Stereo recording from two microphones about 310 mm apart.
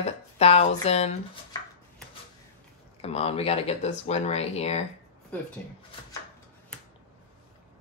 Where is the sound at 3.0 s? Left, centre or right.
Centre.